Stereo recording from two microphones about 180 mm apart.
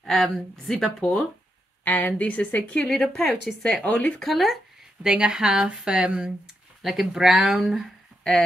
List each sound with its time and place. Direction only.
0.0 s a woman's voice: centre (ahead or behind)